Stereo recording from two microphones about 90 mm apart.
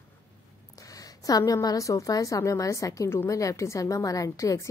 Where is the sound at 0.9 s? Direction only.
40° left (ahead or behind).